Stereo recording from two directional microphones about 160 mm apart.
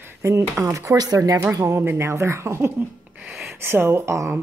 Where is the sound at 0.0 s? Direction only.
15° right (ahead or behind).